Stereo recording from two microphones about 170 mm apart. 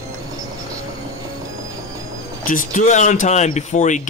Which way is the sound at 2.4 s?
55° left (ahead or behind).